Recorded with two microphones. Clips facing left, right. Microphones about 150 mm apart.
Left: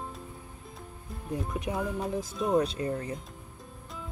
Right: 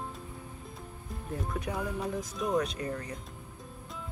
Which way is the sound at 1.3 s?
20° left (ahead or behind).